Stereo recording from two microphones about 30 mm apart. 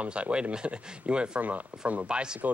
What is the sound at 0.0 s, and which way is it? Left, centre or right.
Speech, right.